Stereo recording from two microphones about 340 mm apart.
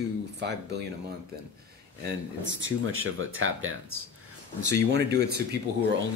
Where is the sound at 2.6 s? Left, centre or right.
Right.